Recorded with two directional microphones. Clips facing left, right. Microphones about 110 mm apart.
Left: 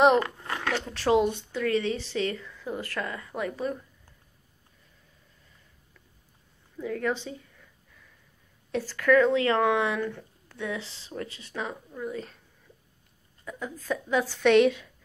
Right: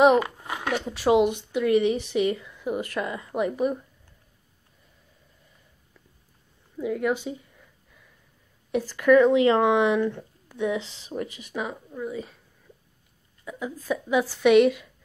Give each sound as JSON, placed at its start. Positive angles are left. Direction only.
{"t": 0.0, "sound": "speech", "side_deg": -10}
{"t": 6.8, "sound": "speech", "side_deg": -10}
{"t": 8.7, "sound": "speech", "side_deg": -15}
{"t": 13.5, "sound": "speech", "side_deg": -10}